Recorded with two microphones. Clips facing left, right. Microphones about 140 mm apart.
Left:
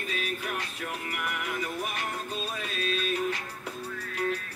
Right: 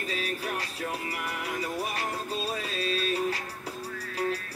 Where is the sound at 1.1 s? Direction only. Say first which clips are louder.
Even; 35° right (ahead or behind).